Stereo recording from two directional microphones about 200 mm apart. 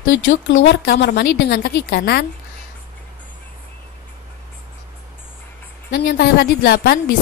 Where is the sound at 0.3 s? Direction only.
75° left (ahead or behind); by 2.2 s 50° left (ahead or behind).